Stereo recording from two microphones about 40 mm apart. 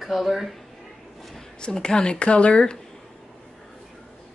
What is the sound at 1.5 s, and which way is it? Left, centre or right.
Speech, left.